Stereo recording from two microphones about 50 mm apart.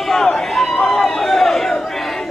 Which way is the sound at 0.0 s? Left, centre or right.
Centre.